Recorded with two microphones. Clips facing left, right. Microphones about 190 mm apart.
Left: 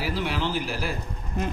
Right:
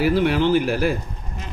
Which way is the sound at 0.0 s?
55° right (ahead or behind).